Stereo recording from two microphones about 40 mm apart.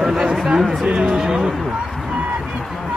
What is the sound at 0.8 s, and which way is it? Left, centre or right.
Speech, right.